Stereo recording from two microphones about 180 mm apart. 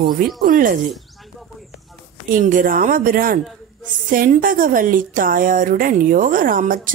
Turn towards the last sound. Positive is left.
turn(degrees=-50)  # may be behind; listen again after turning